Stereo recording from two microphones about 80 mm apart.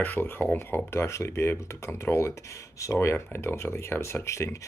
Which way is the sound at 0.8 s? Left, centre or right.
Left.